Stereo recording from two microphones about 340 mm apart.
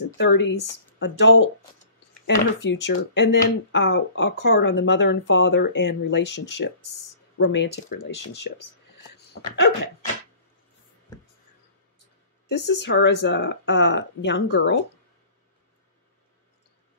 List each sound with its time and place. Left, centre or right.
0.2 s speech: left
12.4 s speech: left